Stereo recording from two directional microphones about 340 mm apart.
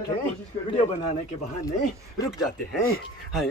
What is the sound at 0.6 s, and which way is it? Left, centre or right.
Speech, centre.